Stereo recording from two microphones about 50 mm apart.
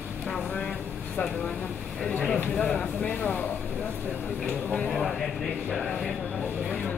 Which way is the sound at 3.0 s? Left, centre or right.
Left.